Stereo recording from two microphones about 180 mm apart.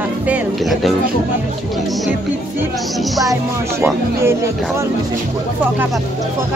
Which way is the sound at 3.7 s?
15° right (ahead or behind).